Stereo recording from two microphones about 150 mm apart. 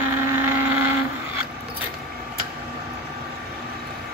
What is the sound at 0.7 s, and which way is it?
Vehicle, 15° right (ahead or behind).